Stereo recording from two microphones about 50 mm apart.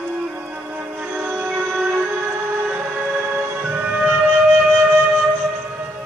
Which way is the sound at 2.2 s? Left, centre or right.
Right.